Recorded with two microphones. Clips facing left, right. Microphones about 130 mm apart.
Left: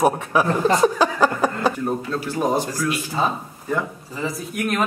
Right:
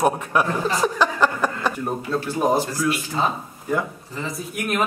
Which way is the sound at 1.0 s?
10° left (ahead or behind).